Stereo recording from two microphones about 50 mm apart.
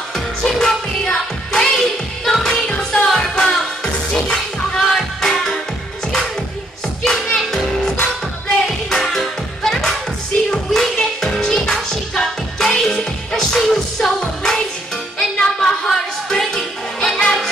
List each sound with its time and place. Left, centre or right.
0.1 s music: centre
2.7 s music: centre
7.3 s music: centre